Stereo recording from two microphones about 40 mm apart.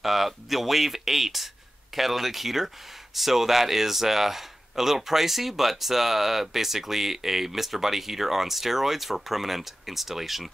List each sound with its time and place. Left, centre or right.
0.0 s a man's voice: centre